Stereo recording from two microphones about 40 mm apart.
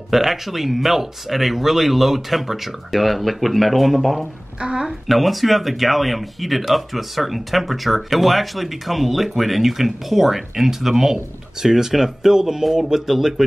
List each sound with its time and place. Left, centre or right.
0.1 s speech: centre
4.6 s a woman's voice: right
4.8 s speech: centre